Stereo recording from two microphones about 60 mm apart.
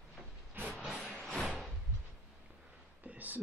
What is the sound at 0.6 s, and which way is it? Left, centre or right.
Vehicle, right.